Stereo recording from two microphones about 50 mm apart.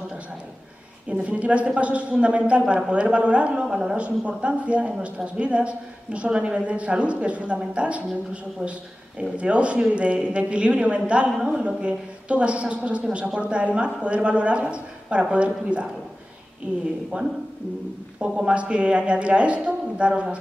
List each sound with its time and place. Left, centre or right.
1.1 s a man's voice: right